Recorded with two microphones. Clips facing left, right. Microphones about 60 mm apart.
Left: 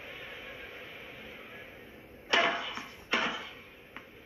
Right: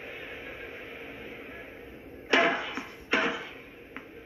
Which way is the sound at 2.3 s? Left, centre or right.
Right.